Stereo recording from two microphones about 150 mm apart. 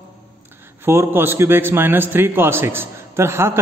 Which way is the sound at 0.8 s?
15° right (ahead or behind).